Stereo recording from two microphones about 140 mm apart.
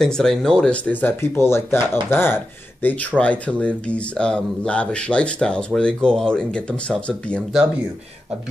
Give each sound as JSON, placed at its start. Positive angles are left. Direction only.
{"t": 0.0, "sound": "speech", "side_deg": 5}